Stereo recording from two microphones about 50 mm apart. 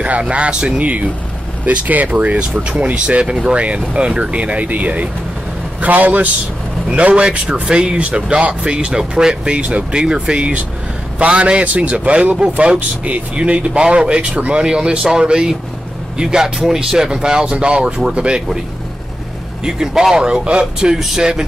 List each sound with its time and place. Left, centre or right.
0.0 s speech: right
2.5 s speech: centre
2.9 s a man's voice: right
19.6 s speech: centre